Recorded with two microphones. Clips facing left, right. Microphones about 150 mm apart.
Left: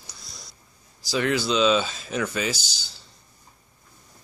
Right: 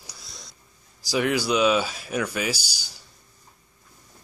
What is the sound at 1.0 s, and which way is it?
Speech, 15° right (ahead or behind).